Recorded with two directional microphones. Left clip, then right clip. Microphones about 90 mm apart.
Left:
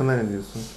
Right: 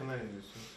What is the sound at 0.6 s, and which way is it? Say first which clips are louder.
Speech: left 13 dB; centre (ahead or behind).